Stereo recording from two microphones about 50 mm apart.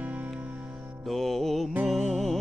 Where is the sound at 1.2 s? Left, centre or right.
Centre.